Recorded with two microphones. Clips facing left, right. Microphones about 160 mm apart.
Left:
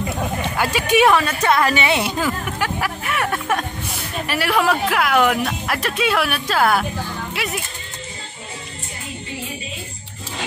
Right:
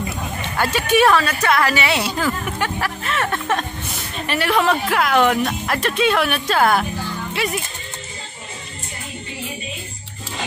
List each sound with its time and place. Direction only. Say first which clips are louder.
0.4 s a woman's voice: right 3 dB; 10° left (ahead or behind)